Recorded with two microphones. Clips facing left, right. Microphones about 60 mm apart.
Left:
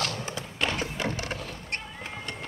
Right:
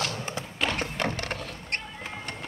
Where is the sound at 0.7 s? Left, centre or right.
Right.